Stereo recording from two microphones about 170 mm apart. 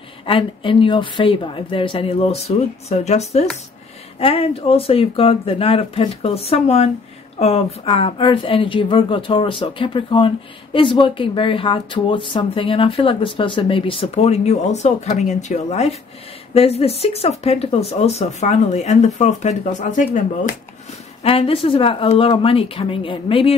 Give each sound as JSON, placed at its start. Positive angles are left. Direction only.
{"t": 0.3, "sound": "speech", "side_deg": 30}
{"t": 21.2, "sound": "speech", "side_deg": 35}